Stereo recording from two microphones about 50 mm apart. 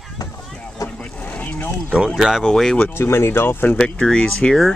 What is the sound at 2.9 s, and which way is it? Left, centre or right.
Speech, left.